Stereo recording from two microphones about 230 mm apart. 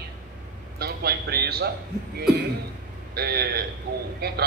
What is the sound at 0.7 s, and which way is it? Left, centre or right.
Speech, right.